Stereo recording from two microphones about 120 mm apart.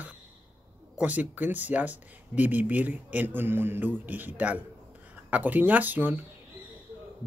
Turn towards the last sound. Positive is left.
turn(degrees=-15)  # may be behind; listen again after turning